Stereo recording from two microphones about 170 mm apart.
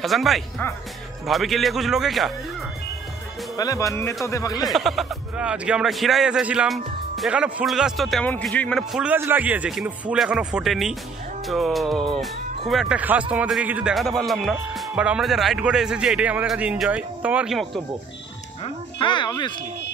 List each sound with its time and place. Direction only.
0.0 s a man's voice: centre (ahead or behind)
3.5 s speech: 20° left (ahead or behind)
4.6 s a man's voice: centre (ahead or behind)
18.6 s speech: 30° left (ahead or behind)